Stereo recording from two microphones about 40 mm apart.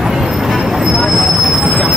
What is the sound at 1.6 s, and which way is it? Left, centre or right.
Train, centre.